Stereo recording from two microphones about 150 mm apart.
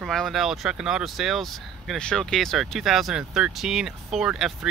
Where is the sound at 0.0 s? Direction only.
Centre (ahead or behind).